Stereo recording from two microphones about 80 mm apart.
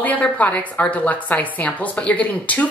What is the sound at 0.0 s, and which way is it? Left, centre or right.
Speech, centre.